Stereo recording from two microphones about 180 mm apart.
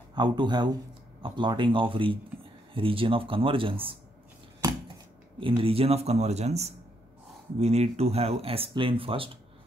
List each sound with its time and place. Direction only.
0.1 s speech: 25° right (ahead or behind)
5.4 s speech: 30° right (ahead or behind)